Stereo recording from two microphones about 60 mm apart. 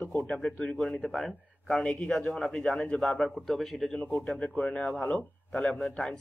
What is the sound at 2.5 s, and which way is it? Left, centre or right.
A man's voice, centre.